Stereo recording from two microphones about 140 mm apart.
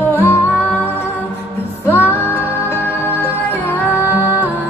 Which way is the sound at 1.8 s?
15° left (ahead or behind).